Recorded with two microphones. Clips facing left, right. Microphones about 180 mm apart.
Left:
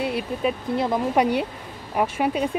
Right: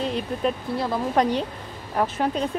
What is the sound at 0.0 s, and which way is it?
Speech, 5° left (ahead or behind).